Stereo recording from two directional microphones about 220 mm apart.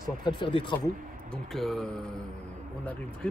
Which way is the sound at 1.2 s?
Centre (ahead or behind).